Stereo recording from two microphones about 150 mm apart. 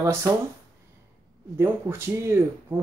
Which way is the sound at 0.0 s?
20° right (ahead or behind).